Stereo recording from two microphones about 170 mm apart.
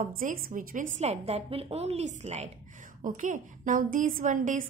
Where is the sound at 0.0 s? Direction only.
50° right (ahead or behind).